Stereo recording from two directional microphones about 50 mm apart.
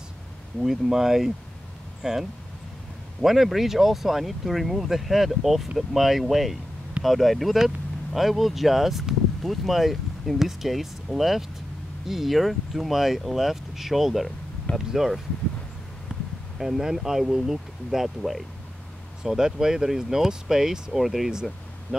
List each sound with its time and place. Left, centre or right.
0.6 s speech: centre
16.1 s a sound: centre
16.5 s speech: centre